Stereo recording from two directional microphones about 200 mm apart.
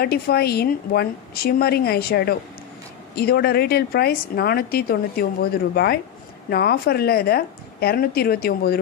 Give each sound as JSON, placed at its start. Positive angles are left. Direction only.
{"t": 0.0, "sound": "a woman's voice", "side_deg": 50}